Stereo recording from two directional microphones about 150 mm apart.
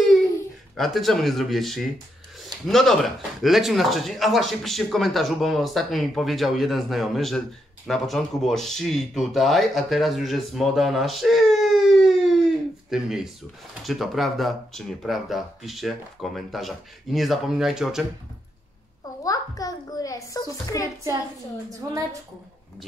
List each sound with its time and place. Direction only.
0.7 s speech: centre (ahead or behind)
19.2 s a child's voice: 25° left (ahead or behind)